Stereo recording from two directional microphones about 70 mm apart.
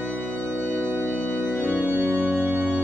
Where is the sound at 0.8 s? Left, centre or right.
Right.